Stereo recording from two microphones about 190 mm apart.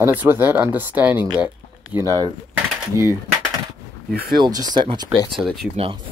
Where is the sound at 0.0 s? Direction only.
10° right (ahead or behind).